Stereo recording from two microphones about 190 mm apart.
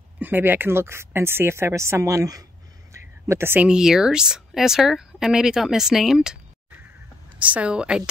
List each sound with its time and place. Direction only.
0.2 s speech: 10° right (ahead or behind)